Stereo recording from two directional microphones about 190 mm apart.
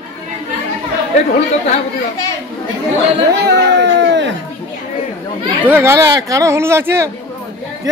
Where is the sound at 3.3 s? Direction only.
65° right (ahead or behind).